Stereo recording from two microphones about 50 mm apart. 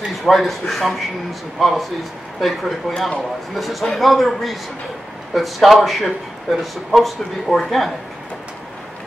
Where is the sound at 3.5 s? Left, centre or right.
Centre.